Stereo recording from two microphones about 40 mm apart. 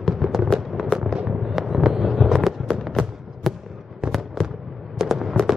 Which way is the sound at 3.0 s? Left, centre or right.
Centre.